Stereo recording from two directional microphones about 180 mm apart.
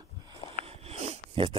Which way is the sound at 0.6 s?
35° right (ahead or behind).